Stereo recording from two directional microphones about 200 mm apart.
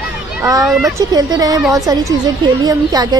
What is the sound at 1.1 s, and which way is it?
Speech, 20° right (ahead or behind).